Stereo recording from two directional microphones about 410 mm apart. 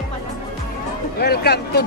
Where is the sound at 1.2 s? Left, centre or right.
Left.